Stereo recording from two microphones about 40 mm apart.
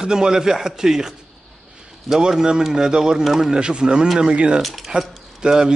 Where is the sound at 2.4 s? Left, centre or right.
Centre.